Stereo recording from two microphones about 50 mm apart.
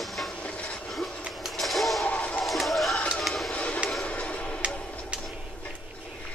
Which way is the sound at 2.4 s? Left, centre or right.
Centre.